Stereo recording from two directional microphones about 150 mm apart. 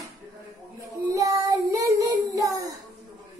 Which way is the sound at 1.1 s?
20° right (ahead or behind).